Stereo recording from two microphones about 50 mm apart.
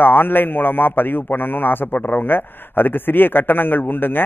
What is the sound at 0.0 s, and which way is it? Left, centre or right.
A man's voice, left.